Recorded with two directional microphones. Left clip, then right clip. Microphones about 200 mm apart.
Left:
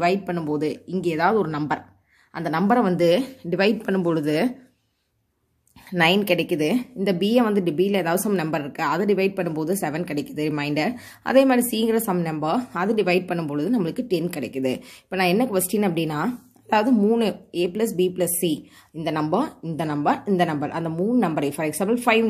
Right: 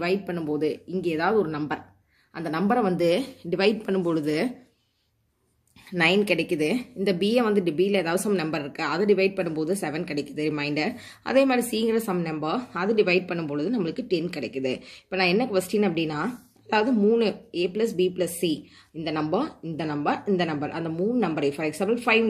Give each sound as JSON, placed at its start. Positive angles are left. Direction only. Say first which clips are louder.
{"t": 0.0, "sound": "a woman's voice", "louder": "left 5 dB", "side_deg": 50}
{"t": 5.9, "sound": "a woman's voice", "louder": "left 2 dB", "side_deg": 40}